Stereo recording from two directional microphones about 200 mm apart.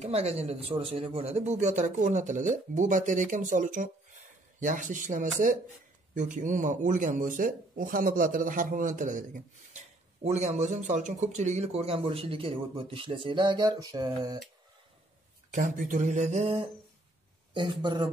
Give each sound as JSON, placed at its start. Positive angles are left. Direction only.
{"t": 0.0, "sound": "speech", "side_deg": -30}
{"t": 15.5, "sound": "speech", "side_deg": -40}